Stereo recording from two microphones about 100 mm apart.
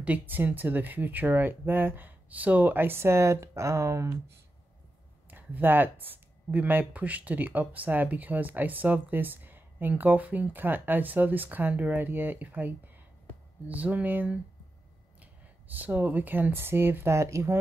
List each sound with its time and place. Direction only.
0.0 s speech: 15° right (ahead or behind)
5.3 s speech: 20° right (ahead or behind)
15.7 s speech: 15° right (ahead or behind)